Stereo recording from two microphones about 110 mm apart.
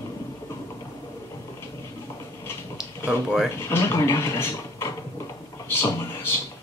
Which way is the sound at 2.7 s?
5° right (ahead or behind).